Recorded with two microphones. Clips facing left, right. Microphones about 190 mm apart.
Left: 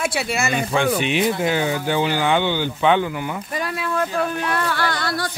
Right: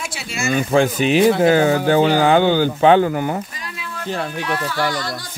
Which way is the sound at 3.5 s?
60° left (ahead or behind).